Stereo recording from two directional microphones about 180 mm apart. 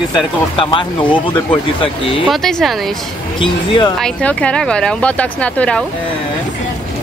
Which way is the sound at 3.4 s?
25° left (ahead or behind).